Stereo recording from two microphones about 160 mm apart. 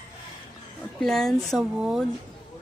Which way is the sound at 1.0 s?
Centre (ahead or behind).